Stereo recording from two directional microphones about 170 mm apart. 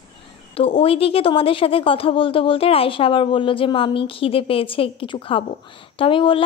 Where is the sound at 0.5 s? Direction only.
35° left (ahead or behind).